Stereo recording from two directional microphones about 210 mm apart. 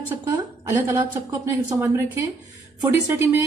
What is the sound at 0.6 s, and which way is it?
A woman's voice, 10° right (ahead or behind).